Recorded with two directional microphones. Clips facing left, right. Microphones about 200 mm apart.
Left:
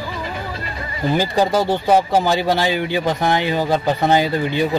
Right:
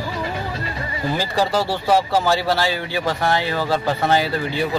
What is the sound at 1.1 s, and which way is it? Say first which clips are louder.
Speech: left 4 dB; 20° left (ahead or behind).